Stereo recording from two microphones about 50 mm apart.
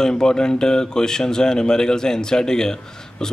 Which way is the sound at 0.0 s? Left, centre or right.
Centre.